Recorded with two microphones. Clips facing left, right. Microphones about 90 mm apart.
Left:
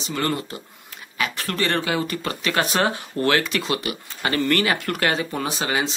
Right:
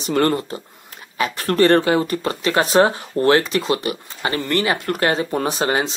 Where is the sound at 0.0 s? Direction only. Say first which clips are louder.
Right 7 dB; 50° right (ahead or behind).